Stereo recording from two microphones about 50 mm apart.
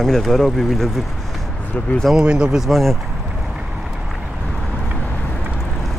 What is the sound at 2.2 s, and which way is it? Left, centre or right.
Speech, centre.